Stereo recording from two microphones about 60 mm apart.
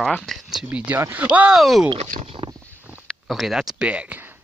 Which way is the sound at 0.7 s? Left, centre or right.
Right.